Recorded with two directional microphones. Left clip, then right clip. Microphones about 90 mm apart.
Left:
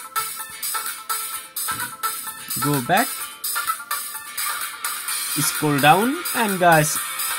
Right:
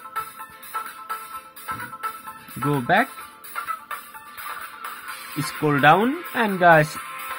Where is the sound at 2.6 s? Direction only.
15° left (ahead or behind).